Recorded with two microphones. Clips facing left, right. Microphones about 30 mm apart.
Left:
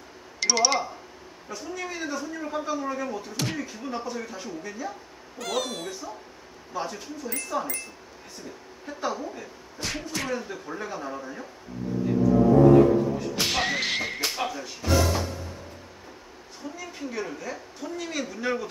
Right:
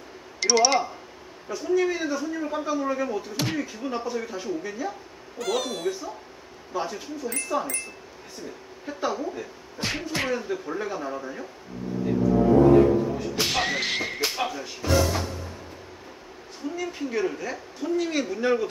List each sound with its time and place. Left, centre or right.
0.4 s a man's voice: centre
9.8 s speech: right
10.3 s a man's voice: centre
12.7 s speech: centre
16.6 s a man's voice: centre